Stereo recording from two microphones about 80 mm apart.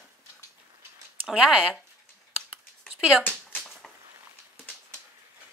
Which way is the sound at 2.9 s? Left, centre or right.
Centre.